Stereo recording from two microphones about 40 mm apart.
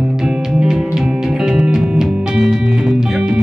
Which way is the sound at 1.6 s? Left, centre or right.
Right.